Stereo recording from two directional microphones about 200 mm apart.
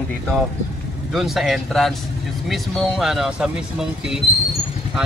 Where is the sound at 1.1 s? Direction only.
Centre (ahead or behind).